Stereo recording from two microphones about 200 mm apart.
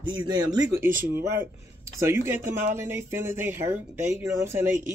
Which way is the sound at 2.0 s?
15° right (ahead or behind).